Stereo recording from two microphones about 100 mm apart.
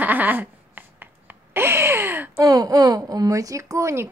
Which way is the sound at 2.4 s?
40° right (ahead or behind).